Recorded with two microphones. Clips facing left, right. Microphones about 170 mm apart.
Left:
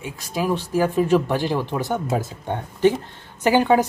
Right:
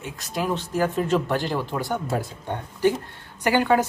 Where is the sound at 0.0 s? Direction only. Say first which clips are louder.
Left 3 dB; 10° left (ahead or behind).